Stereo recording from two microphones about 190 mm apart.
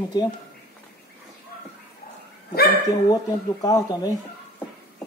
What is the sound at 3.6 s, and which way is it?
Speech, 20° left (ahead or behind).